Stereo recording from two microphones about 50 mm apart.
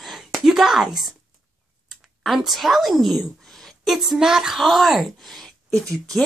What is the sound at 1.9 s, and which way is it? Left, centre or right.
A woman's voice, centre.